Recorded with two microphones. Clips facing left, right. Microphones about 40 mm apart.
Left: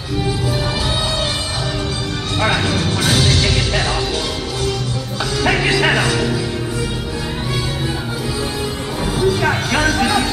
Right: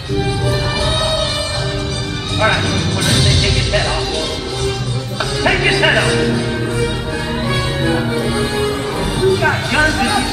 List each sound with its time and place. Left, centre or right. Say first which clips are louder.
2.4 s speech: right 2 dB; centre
5.4 s speech: right 2 dB; centre
7.8 s music: right 6 dB; right
9.2 s speech: right 2 dB; centre